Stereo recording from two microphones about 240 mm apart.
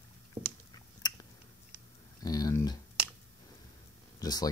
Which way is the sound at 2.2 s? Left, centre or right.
Centre.